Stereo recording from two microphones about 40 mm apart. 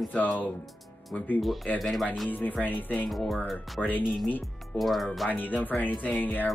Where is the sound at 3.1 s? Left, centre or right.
Centre.